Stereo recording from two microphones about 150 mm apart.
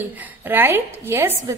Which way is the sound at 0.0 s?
15° right (ahead or behind).